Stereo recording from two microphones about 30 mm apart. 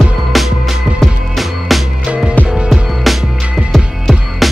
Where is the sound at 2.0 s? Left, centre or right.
Right.